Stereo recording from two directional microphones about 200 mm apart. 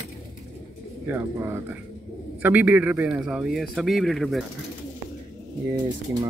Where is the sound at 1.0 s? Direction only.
10° right (ahead or behind).